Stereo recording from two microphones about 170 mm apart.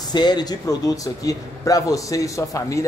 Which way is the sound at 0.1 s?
25° left (ahead or behind).